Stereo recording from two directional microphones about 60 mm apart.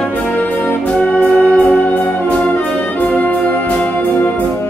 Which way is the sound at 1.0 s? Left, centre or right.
Centre.